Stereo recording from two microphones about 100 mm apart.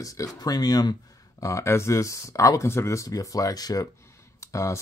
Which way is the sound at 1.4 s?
30° left (ahead or behind).